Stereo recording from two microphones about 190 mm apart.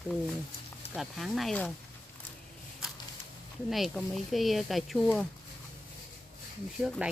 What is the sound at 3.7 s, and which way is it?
Speech, centre (ahead or behind).